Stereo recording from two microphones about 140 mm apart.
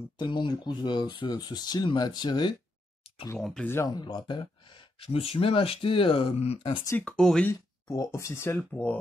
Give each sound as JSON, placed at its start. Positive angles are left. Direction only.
{"t": 0.2, "sound": "speech", "side_deg": 35}
{"t": 3.3, "sound": "speech", "side_deg": 5}
{"t": 3.6, "sound": "speech", "side_deg": 15}
{"t": 3.9, "sound": "speech", "side_deg": 30}
{"t": 7.0, "sound": "speech", "side_deg": 5}
{"t": 7.9, "sound": "speech", "side_deg": 25}